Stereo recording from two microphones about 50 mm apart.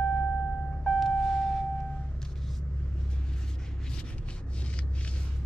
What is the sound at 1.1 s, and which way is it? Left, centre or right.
Music, centre.